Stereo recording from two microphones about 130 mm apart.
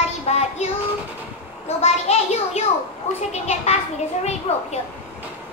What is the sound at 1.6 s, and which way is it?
Child singing, 55° left (ahead or behind).